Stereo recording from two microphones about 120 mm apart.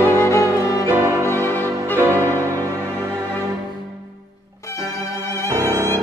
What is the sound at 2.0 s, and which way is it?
Music, 20° right (ahead or behind).